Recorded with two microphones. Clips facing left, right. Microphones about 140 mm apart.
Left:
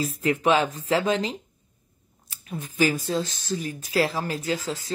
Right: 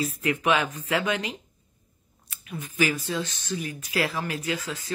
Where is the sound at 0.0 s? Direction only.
40° left (ahead or behind).